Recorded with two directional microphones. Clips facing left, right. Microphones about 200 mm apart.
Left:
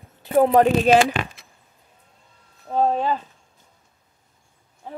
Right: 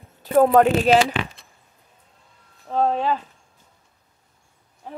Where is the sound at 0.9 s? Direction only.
45° left (ahead or behind).